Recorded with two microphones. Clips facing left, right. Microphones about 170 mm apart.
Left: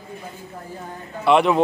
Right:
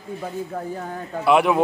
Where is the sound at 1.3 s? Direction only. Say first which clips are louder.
Left 1 dB; 5° right (ahead or behind).